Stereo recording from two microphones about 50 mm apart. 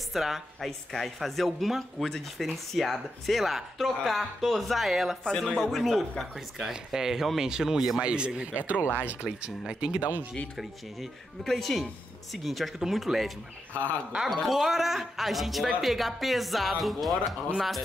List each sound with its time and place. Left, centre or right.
0.1 s a woman's voice: centre
6.6 s speech: centre
8.0 s speech: centre
10.6 s a woman's voice: centre
14.3 s a woman's voice: centre